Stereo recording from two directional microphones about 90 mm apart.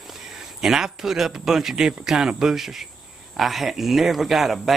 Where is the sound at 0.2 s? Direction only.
5° right (ahead or behind).